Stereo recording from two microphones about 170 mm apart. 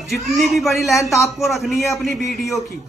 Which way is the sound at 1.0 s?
20° left (ahead or behind).